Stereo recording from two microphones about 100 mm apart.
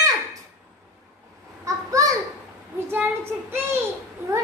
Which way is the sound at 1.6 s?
35° right (ahead or behind).